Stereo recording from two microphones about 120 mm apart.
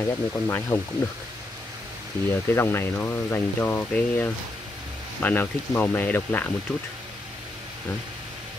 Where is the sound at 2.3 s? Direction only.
20° left (ahead or behind).